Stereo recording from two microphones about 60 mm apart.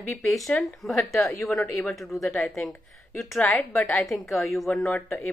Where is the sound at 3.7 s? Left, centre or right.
Left.